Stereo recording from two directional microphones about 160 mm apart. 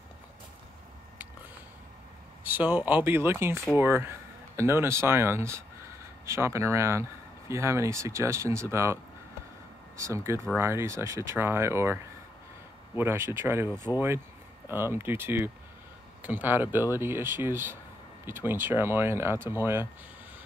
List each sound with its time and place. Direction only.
2.4 s speech: 10° right (ahead or behind)